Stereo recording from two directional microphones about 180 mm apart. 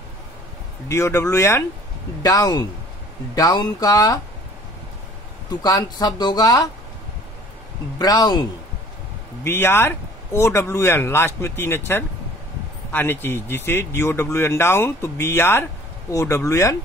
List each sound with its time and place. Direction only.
0.8 s speech: 15° left (ahead or behind)
5.5 s speech: 20° left (ahead or behind)
8.0 s speech: 20° left (ahead or behind)